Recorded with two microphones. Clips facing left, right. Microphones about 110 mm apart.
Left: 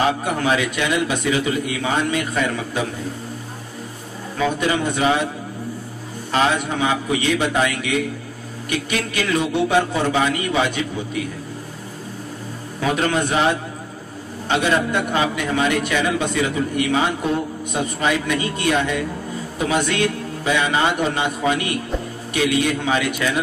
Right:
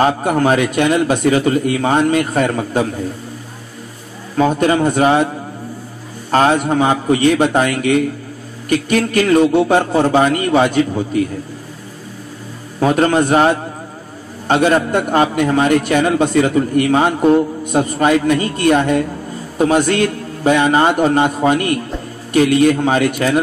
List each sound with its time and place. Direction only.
0.0 s a man's voice: 45° right (ahead or behind)
4.4 s a man's voice: 45° right (ahead or behind)
6.3 s a man's voice: 45° right (ahead or behind)
12.8 s a man's voice: 45° right (ahead or behind)